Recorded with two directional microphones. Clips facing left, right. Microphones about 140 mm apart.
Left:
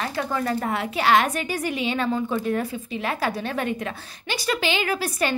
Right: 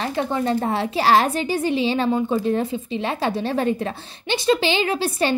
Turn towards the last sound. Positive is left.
turn(degrees=-25)  # may be behind; listen again after turning